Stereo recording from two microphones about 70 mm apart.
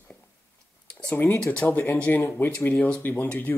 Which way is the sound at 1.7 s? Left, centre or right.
Left.